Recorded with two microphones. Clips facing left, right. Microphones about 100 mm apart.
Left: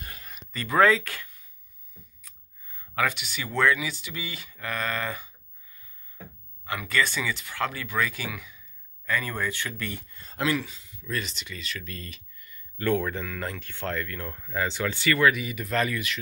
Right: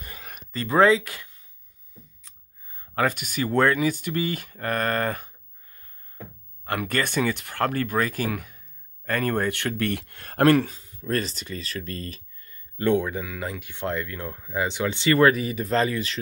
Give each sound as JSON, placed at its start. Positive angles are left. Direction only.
{"t": 0.5, "sound": "speech", "side_deg": -30}
{"t": 2.2, "sound": "a sound", "side_deg": -30}
{"t": 3.0, "sound": "speech", "side_deg": -45}
{"t": 12.8, "sound": "speech", "side_deg": -20}
{"t": 15.1, "sound": "speech", "side_deg": -35}